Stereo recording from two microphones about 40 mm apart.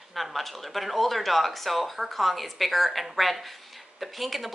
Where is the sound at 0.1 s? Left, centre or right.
Centre.